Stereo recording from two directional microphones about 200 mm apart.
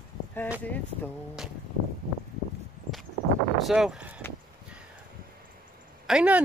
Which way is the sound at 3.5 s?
Centre (ahead or behind).